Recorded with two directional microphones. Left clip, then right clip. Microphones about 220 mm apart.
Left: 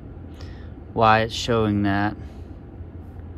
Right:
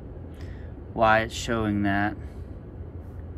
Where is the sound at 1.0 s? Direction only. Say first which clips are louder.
Left 3 dB; 20° left (ahead or behind).